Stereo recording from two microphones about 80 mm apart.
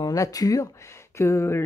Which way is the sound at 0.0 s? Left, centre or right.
Left.